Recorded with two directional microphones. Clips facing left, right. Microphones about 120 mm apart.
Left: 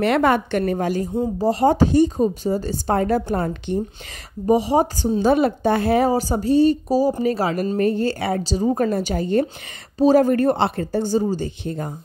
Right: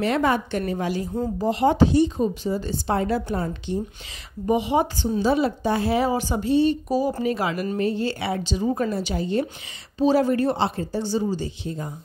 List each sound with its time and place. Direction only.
0.0 s a woman's voice: 60° left (ahead or behind)
4.5 s speech: 35° left (ahead or behind)
5.2 s speech: 55° left (ahead or behind)